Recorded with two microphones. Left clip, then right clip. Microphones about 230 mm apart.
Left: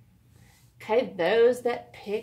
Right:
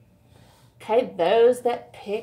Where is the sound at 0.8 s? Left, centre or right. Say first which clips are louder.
Right 3 dB; centre.